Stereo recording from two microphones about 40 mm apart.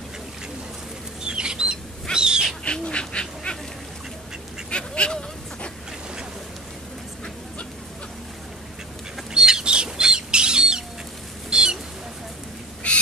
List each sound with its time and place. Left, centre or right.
1.2 s bird flight: right
2.1 s owl: centre
2.6 s duck: left
4.6 s duck: left
9.3 s bird flight: centre
11.5 s a sound: centre
12.9 s bird: left